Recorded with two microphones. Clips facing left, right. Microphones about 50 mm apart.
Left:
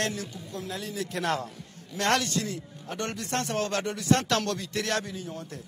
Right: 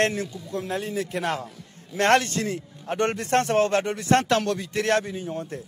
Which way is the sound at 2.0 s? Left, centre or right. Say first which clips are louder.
Right 6 dB; right.